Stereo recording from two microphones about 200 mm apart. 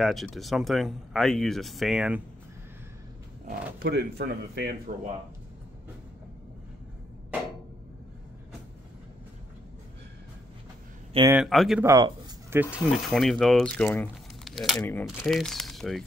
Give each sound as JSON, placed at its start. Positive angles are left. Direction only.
{"t": 0.0, "sound": "speech", "side_deg": 0}
{"t": 3.4, "sound": "speech", "side_deg": -50}
{"t": 11.3, "sound": "speech", "side_deg": 0}
{"t": 11.8, "sound": "speech", "side_deg": -15}